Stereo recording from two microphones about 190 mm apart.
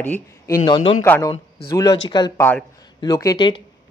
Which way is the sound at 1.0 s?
10° left (ahead or behind).